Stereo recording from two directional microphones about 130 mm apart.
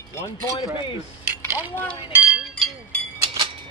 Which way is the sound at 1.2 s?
15° right (ahead or behind).